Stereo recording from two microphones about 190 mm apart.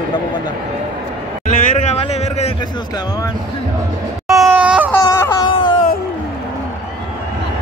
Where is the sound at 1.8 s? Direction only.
35° left (ahead or behind).